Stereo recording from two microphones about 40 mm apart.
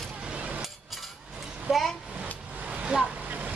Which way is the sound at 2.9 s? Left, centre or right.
Right.